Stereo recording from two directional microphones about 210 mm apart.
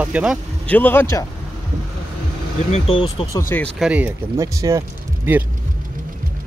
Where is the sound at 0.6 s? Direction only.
10° left (ahead or behind).